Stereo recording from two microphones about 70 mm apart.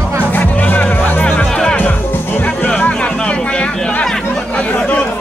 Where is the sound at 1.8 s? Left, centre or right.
Left.